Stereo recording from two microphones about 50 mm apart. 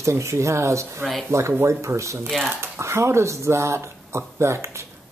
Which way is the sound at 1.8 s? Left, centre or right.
Right.